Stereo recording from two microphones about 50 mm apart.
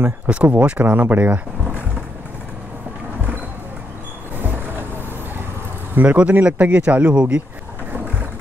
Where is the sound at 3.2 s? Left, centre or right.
Right.